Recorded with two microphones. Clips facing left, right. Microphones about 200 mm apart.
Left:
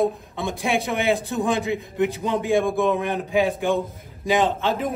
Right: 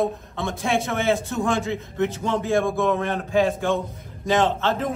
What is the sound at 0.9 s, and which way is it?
A man's voice, 15° left (ahead or behind).